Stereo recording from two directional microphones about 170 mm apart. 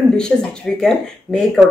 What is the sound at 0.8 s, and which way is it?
Speech, centre (ahead or behind).